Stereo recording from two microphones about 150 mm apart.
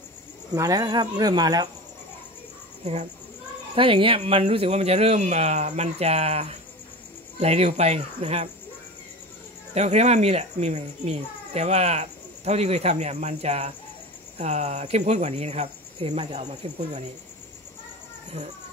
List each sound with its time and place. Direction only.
0.6 s speech: 25° right (ahead or behind)
2.8 s speech: 45° right (ahead or behind)
9.8 s speech: 45° right (ahead or behind)